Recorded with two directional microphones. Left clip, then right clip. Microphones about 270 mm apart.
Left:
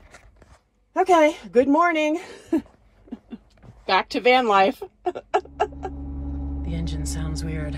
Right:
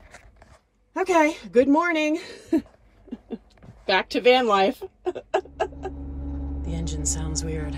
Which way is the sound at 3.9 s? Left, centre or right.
Left.